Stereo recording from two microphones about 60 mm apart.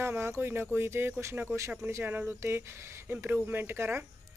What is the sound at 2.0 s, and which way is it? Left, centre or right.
Speech, right.